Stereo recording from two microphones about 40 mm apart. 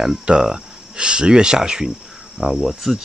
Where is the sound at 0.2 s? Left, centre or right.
Right.